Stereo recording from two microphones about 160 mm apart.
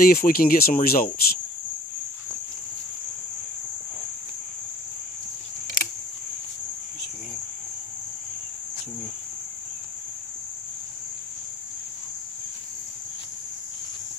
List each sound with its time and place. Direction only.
0.0 s speech: 65° left (ahead or behind)